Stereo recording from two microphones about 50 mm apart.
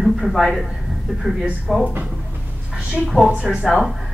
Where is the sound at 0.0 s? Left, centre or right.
Centre.